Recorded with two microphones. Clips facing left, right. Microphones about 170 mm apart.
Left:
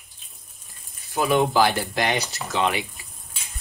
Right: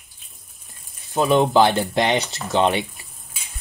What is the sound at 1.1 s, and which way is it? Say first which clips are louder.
Speech: right 4 dB; 25° right (ahead or behind).